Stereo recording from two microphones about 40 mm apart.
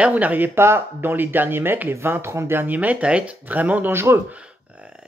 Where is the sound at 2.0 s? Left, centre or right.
Right.